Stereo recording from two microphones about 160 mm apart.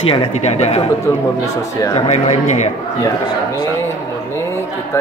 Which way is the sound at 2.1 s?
45° left (ahead or behind).